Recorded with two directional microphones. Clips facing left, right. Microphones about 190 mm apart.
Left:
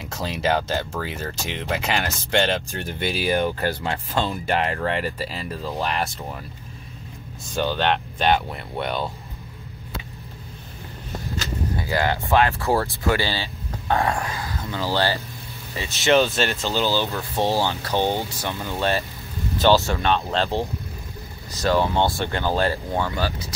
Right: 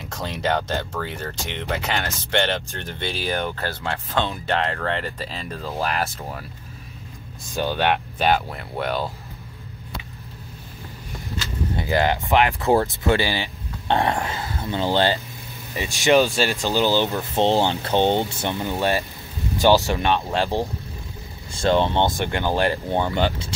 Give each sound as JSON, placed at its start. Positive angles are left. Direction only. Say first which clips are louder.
{"t": 0.0, "sound": "speech", "louder": "left 1 dB", "side_deg": 5}
{"t": 7.6, "sound": "speech", "louder": "right 1 dB", "side_deg": -10}
{"t": 11.7, "sound": "vehicle", "louder": "right 3 dB", "side_deg": -20}
{"t": 12.3, "sound": "speech", "louder": "even", "side_deg": -15}
{"t": 21.5, "sound": "speech", "louder": "right 1 dB", "side_deg": -25}